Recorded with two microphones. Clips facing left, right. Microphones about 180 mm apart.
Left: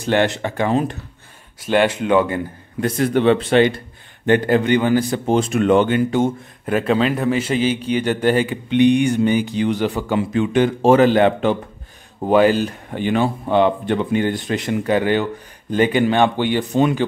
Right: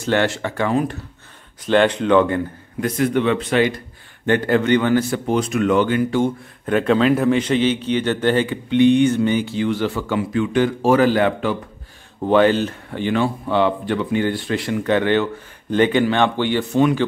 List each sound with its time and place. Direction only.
0.0 s a man's voice: 15° left (ahead or behind)
1.6 s a man's voice: 10° left (ahead or behind)
2.8 s speech: 35° left (ahead or behind)
4.3 s a man's voice: 15° left (ahead or behind)
5.2 s speech: 25° left (ahead or behind)
6.7 s a man's voice: 5° left (ahead or behind); by 11.5 s 25° left (ahead or behind)
12.3 s a man's voice: 10° left (ahead or behind)